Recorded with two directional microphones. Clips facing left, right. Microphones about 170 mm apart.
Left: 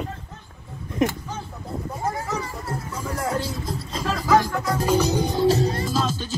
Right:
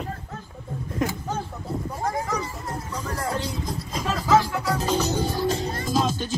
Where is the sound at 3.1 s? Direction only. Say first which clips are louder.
Left 3 dB; 10° left (ahead or behind).